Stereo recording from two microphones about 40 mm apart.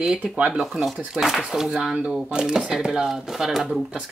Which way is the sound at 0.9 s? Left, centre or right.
Centre.